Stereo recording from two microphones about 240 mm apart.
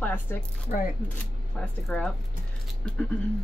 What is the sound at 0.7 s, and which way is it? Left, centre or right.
Speech, left.